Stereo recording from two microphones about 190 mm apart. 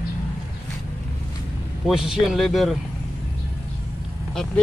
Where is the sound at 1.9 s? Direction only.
Centre (ahead or behind).